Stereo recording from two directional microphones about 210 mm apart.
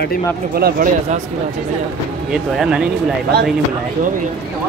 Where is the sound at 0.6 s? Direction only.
50° right (ahead or behind).